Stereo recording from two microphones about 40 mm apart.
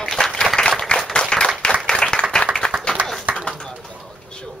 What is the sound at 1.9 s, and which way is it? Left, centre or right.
Applause, centre.